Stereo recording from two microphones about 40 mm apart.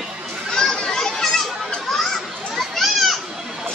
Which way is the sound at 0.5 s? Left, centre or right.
Centre.